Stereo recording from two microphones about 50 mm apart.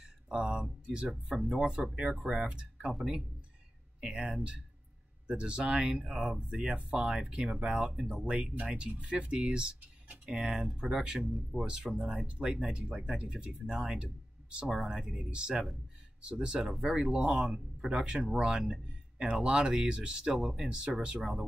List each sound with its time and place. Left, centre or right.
0.0 s a sound: centre
1.0 s speech: centre
1.7 s speech: centre
2.1 s speech: centre
2.4 s speech: centre
4.0 s speech: centre
11.9 s speech: centre